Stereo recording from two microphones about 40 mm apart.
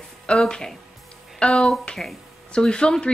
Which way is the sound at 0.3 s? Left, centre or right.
Centre.